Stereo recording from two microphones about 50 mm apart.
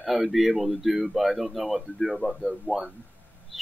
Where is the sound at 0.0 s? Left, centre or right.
Centre.